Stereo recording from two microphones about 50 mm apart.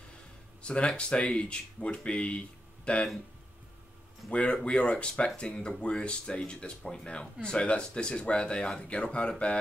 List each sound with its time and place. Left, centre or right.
0.6 s a sound: left
0.9 s speech: left
4.3 s speech: left